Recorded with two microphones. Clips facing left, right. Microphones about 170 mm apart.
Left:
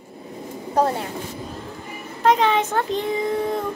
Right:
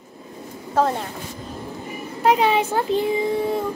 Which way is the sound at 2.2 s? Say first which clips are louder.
Even; 10° right (ahead or behind).